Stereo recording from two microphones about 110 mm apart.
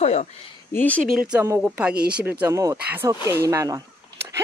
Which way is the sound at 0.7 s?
15° left (ahead or behind).